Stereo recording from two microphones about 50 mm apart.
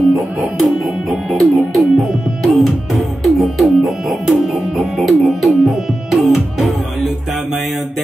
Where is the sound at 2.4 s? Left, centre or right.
Centre.